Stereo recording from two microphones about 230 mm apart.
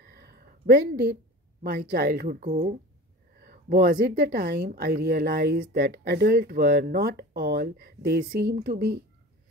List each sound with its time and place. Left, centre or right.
0.0 s a sound: right
1.6 s speech: right
3.3 s speech: right